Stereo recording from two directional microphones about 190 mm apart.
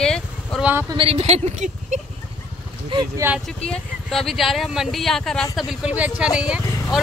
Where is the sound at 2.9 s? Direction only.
20° right (ahead or behind).